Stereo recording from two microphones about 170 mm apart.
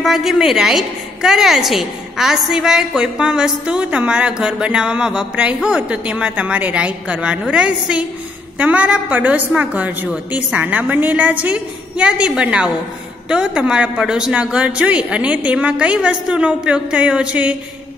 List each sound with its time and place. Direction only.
0.0 s a woman's voice: centre (ahead or behind)